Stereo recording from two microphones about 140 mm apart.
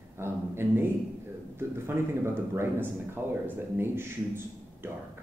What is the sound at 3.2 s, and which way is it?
A man's voice, 15° right (ahead or behind).